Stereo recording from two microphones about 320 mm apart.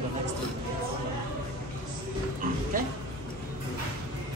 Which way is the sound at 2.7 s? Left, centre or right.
Right.